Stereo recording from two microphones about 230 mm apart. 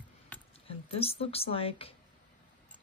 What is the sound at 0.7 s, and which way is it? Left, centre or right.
Speech, left.